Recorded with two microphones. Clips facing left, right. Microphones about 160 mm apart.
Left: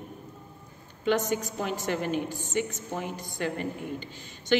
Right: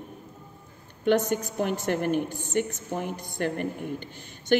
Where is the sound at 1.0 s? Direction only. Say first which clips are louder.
Right 3 dB; 55° right (ahead or behind).